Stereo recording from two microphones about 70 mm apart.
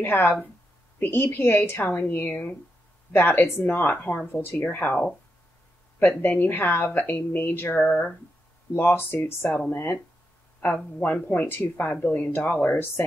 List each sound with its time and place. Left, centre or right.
0.0 s a woman's voice: left
10.7 s a woman's voice: centre